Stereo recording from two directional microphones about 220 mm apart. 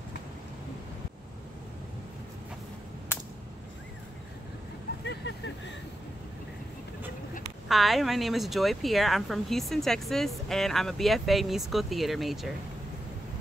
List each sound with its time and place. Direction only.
3.1 s a sound: 10° left (ahead or behind)
5.0 s vehicle: 55° left (ahead or behind)
7.6 s speech: centre (ahead or behind)